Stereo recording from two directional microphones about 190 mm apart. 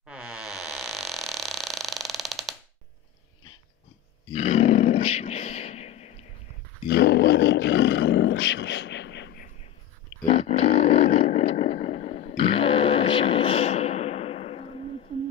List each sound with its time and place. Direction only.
0.0 s creak: 5° right (ahead or behind)
4.3 s roar: 35° left (ahead or behind)
6.9 s speech: 60° left (ahead or behind)
10.2 s roaring cats: 30° left (ahead or behind)
11.1 s a sound: 35° left (ahead or behind)